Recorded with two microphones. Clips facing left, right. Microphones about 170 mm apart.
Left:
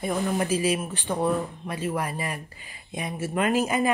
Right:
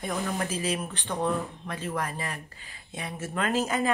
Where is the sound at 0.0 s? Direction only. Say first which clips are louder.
Left 5 dB; 10° left (ahead or behind).